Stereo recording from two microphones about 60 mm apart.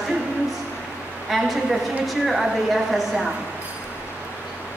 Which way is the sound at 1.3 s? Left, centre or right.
Centre.